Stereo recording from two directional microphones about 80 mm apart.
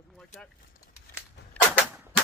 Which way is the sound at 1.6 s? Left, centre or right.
Centre.